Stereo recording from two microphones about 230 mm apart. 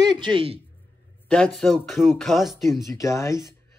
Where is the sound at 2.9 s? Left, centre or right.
Centre.